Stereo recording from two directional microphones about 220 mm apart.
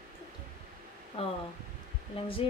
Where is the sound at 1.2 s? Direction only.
25° left (ahead or behind).